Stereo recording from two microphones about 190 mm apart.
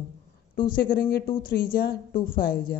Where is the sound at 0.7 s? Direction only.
50° left (ahead or behind).